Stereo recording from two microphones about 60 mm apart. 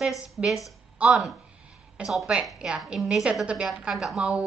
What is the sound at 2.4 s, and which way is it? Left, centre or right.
Speech, centre.